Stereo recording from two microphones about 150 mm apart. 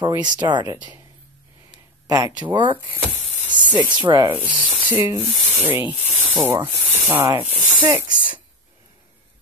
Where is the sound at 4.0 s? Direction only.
30° right (ahead or behind).